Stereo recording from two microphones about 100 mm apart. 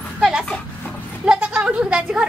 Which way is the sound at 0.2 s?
5° right (ahead or behind).